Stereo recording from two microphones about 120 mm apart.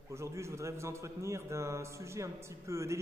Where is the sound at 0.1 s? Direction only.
25° right (ahead or behind).